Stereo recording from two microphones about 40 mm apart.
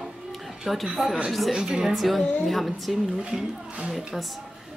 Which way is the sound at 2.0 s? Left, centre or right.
Centre.